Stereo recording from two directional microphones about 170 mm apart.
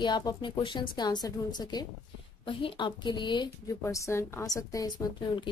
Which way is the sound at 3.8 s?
15° left (ahead or behind).